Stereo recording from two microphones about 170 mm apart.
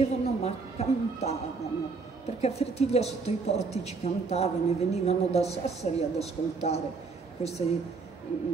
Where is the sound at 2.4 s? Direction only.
40° left (ahead or behind).